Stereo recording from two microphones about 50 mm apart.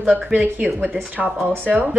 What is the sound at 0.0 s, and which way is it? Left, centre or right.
Speech, right.